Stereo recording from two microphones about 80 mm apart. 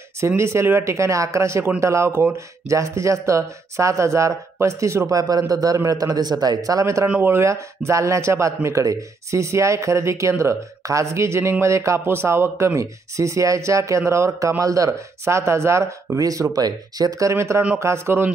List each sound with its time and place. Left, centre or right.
0.4 s speech: right
7.1 s speech: centre
7.3 s speech: right
17.3 s speech: right